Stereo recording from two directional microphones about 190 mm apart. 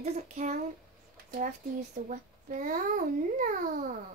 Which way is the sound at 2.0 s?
40° right (ahead or behind).